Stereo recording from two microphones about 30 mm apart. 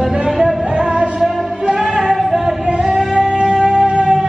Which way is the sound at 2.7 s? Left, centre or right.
Right.